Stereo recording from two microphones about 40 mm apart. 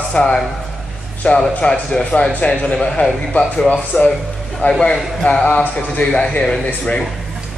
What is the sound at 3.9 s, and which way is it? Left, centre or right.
Speech, left.